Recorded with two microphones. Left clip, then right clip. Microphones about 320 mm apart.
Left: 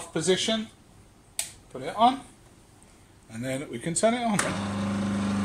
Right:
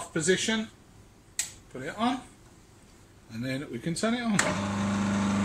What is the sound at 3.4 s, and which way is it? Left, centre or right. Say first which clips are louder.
Speech: left 2 dB; left.